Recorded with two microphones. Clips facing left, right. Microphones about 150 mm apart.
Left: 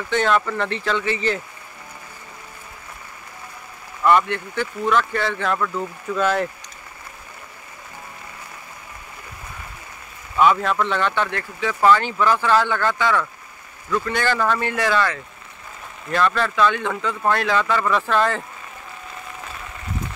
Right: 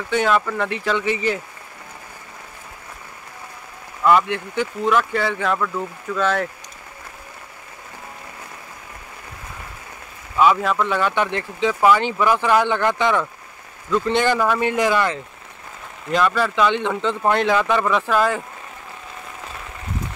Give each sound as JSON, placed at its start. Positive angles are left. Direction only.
{"t": 0.1, "sound": "speech", "side_deg": -10}
{"t": 4.0, "sound": "speech", "side_deg": -5}
{"t": 10.3, "sound": "speech", "side_deg": -5}
{"t": 11.2, "sound": "speech", "side_deg": -20}